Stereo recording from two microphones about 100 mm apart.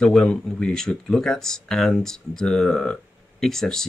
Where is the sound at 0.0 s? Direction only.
10° left (ahead or behind).